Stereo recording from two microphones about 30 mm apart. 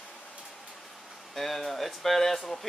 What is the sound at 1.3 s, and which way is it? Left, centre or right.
Speech, centre.